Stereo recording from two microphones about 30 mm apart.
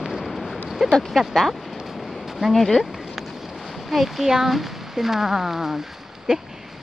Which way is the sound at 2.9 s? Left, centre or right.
Centre.